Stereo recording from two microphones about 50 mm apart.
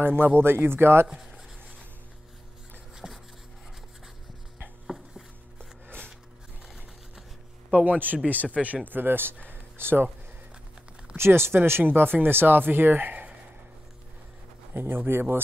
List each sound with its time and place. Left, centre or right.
0.0 s speech: right
1.0 s speech: centre
3.0 s a sound: centre
4.8 s a sound: centre
7.7 s speech: right
8.8 s speech: right
11.1 s speech: right
11.8 s speech: right
14.7 s speech: right